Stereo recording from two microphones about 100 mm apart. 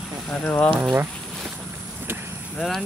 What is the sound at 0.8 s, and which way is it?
Speech, 25° right (ahead or behind).